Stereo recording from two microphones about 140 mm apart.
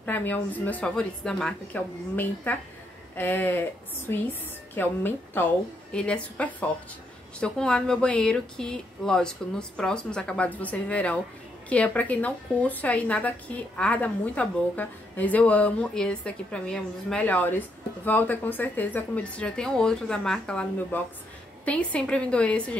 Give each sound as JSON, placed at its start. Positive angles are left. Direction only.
{"t": 0.0, "sound": "a woman's voice", "side_deg": 10}